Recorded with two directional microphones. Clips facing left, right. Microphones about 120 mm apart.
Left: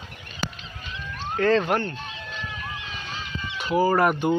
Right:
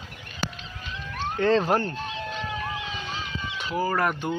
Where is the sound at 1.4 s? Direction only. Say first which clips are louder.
Left 1 dB; 25° right (ahead or behind).